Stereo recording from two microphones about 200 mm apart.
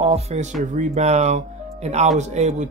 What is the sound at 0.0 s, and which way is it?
Speech, 30° right (ahead or behind).